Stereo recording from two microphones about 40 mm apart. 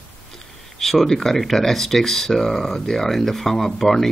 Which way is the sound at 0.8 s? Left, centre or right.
Centre.